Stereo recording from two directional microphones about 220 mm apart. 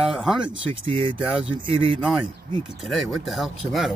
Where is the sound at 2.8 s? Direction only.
Centre (ahead or behind).